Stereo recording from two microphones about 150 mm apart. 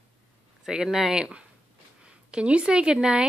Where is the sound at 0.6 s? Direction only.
5° right (ahead or behind).